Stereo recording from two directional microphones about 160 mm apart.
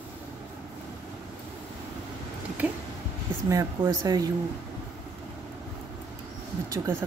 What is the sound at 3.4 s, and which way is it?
Speech, 20° right (ahead or behind).